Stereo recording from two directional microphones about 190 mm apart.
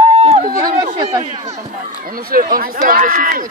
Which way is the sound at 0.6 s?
20° right (ahead or behind).